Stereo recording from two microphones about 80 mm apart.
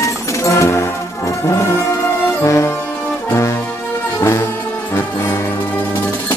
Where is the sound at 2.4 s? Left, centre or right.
Left.